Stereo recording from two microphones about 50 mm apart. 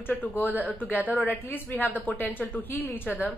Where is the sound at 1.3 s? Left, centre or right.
Left.